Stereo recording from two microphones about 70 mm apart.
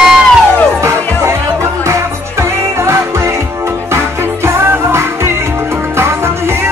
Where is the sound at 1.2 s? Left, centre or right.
Right.